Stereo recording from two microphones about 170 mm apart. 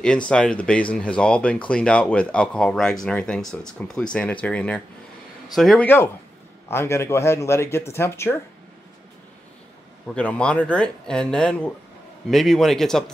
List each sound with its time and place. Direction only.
0.3 s speech: 5° left (ahead or behind)
6.7 s speech: 15° left (ahead or behind)
10.0 s speech: 5° left (ahead or behind)